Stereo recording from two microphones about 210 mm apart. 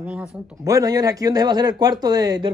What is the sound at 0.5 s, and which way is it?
Speech, 15° right (ahead or behind).